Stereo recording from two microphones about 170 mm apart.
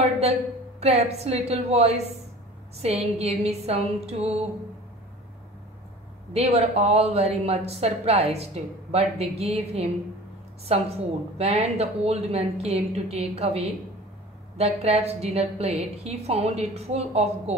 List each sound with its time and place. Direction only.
0.0 s a woman's voice: 40° right (ahead or behind)
6.3 s speech: 35° right (ahead or behind)
11.3 s speech: 35° right (ahead or behind)